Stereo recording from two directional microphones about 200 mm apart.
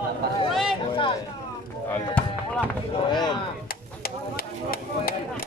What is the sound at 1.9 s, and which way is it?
Chop, 5° left (ahead or behind).